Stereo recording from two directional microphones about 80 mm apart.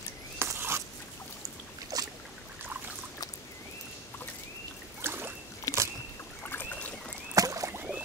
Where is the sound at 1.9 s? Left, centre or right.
Right.